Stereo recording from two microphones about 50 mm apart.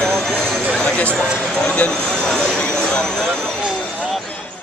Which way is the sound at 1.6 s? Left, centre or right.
Left.